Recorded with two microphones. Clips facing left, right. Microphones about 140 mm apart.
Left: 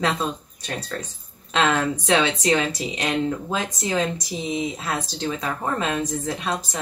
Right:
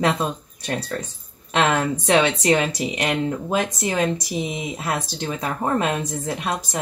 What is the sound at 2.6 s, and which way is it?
Speech, 10° right (ahead or behind).